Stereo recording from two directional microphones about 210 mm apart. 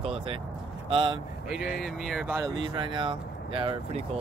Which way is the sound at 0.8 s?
25° right (ahead or behind).